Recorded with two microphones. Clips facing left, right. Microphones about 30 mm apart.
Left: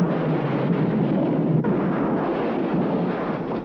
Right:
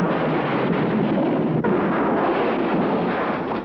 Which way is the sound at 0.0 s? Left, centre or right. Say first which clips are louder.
Right 2 dB; right.